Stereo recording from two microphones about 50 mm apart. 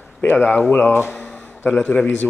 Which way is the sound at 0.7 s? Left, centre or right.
Left.